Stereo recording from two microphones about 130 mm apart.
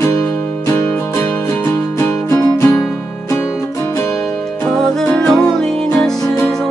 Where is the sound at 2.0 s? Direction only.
20° left (ahead or behind).